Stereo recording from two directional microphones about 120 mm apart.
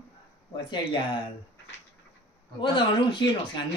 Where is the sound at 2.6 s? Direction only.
40° left (ahead or behind).